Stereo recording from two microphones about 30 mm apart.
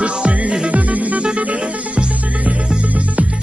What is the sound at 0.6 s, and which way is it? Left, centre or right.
Music, right.